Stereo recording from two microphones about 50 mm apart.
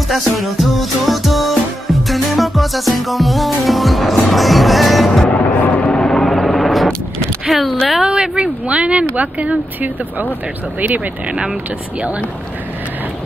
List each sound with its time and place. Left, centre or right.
0.1 s music: centre
5.3 s music: left
5.9 s a sound: centre
7.4 s music: centre
8.0 s speech: centre